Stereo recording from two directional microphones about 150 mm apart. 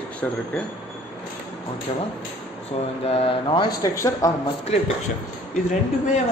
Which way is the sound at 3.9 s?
20° left (ahead or behind).